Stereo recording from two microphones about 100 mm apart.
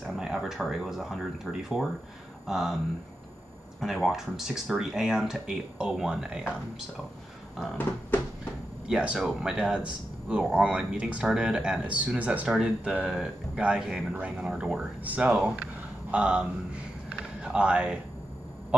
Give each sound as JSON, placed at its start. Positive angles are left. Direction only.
{"t": 0.0, "sound": "speech", "side_deg": -5}
{"t": 3.8, "sound": "speech", "side_deg": -5}
{"t": 8.8, "sound": "a man's voice", "side_deg": -10}
{"t": 16.1, "sound": "a sound", "side_deg": -10}